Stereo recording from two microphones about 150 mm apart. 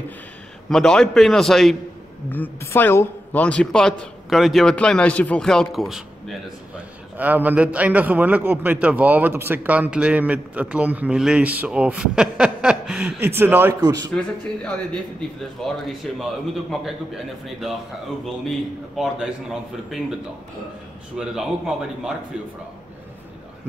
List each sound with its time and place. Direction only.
0.7 s a woman's voice: 5° left (ahead or behind)
2.3 s a woman's voice: 15° left (ahead or behind)
7.2 s a man's voice: 10° right (ahead or behind)
13.7 s a man's voice: 25° right (ahead or behind)
14.6 s a woman's voice: 10° left (ahead or behind)
18.9 s a woman's voice: 5° right (ahead or behind)
21.2 s a woman's voice: 5° right (ahead or behind)